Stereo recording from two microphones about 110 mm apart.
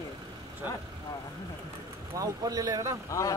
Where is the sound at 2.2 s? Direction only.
35° right (ahead or behind).